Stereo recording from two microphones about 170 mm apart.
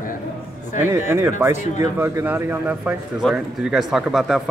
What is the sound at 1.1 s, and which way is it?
Speech, 15° right (ahead or behind).